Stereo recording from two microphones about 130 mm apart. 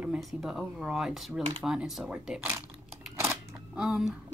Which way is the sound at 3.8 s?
5° right (ahead or behind).